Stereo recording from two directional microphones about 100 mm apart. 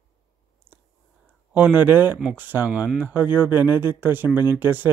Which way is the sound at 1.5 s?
15° right (ahead or behind).